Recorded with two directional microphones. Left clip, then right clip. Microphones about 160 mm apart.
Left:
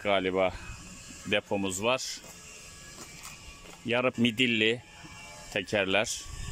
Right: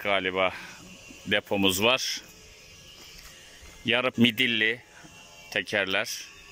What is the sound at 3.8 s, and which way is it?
Speech, centre (ahead or behind).